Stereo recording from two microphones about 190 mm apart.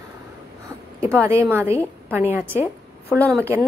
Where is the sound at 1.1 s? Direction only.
15° right (ahead or behind).